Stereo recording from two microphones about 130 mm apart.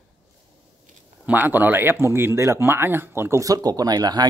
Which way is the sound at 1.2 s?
15° right (ahead or behind).